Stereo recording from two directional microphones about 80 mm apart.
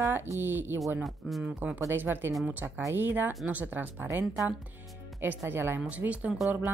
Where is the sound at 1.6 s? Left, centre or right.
Right.